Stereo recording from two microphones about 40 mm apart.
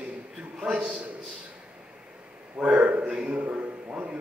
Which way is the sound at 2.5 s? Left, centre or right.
Right.